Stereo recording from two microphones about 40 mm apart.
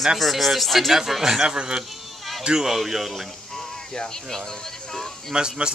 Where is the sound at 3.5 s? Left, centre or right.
Centre.